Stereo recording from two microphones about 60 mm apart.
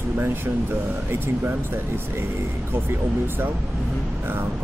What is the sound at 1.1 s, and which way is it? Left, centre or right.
Speech, right.